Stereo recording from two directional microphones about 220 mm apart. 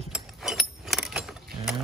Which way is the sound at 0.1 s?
Centre (ahead or behind).